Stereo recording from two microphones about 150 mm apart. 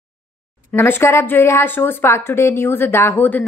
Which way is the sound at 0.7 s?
15° left (ahead or behind).